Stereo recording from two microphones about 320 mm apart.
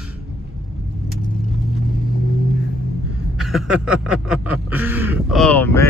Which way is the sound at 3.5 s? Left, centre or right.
Centre.